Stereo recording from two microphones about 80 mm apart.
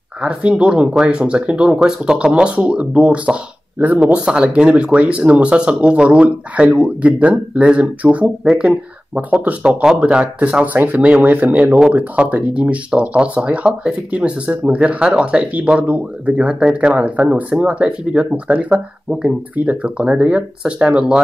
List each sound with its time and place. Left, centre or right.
0.2 s speech: centre